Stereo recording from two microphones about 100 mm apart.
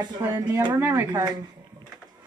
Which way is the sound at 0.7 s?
25° right (ahead or behind).